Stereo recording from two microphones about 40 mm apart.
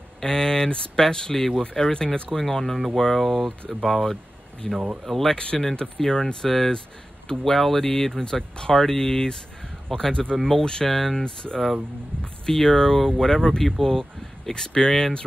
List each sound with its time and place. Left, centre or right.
0.2 s speech: centre
5.0 s speech: centre
5.3 s speech: left; by 11.2 s centre
11.2 s speech: left